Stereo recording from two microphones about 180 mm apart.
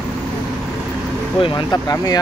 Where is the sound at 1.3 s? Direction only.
25° left (ahead or behind).